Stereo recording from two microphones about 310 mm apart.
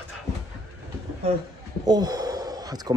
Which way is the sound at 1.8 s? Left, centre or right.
Centre.